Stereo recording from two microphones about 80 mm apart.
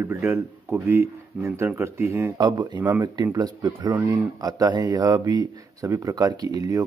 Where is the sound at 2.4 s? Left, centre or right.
Right.